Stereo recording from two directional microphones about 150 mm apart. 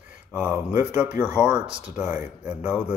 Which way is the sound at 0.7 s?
10° right (ahead or behind).